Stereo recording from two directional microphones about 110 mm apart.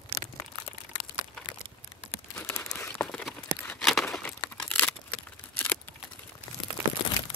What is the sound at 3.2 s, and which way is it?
Tearing, 5° left (ahead or behind).